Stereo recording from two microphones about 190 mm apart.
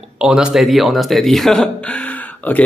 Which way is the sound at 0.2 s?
5° right (ahead or behind).